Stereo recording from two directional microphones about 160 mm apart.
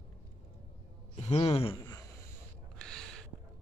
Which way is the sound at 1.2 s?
40° left (ahead or behind).